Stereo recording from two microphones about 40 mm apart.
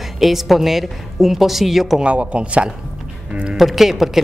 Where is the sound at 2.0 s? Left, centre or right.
Right.